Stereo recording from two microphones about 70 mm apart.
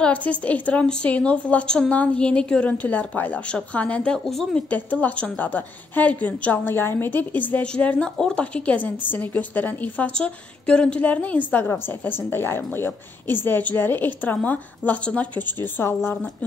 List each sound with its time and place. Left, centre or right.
0.0 s a woman's voice: left
7.7 s a woman's voice: centre